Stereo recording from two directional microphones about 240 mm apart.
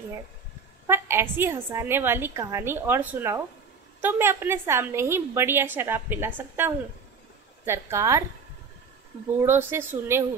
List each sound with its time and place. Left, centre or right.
0.8 s a woman's voice: centre
9.4 s a woman's voice: centre